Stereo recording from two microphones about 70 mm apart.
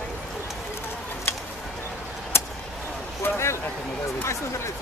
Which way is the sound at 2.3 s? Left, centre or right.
Left.